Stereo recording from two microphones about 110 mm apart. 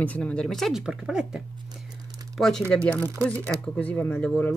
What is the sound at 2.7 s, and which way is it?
Speech, 10° left (ahead or behind).